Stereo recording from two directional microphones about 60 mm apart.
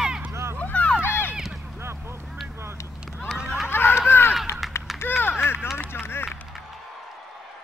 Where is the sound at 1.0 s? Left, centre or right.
Left.